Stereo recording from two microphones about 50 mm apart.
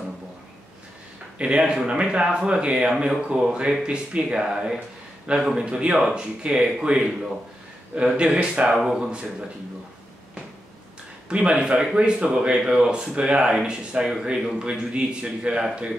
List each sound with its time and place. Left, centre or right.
1.4 s a man's voice: centre
11.2 s speech: right